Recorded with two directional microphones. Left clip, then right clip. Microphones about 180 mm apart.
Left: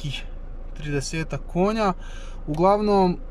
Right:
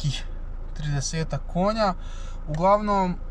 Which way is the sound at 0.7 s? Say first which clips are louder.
Left 3 dB; 5° left (ahead or behind).